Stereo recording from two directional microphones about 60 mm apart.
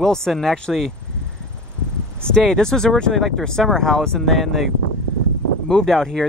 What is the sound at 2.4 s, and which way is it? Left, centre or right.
Speech, centre.